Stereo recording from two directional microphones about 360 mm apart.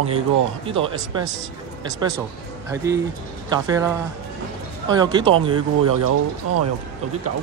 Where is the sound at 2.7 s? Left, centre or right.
Centre.